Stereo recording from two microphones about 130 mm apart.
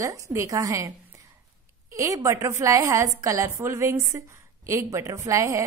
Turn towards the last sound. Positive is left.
turn(degrees=-25)  # may be behind; listen again after turning